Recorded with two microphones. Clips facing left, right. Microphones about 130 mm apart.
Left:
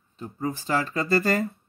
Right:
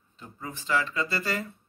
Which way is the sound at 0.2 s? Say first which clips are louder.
Left 10 dB; 40° left (ahead or behind).